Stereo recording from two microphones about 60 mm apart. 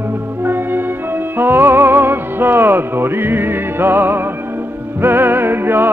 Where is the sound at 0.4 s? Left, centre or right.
Right.